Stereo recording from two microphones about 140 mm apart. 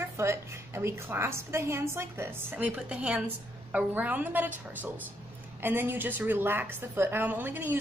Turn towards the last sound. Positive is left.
turn(degrees=-15)  # may be behind; listen again after turning